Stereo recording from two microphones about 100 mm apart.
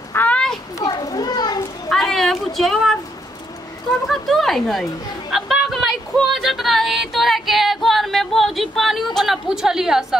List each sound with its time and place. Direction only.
0.1 s children playing: 20° left (ahead or behind)
0.7 s children playing: 40° left (ahead or behind)
1.9 s a sound: 5° left (ahead or behind)
4.1 s speech: centre (ahead or behind)